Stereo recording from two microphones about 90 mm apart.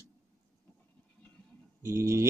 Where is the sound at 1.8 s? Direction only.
30° right (ahead or behind).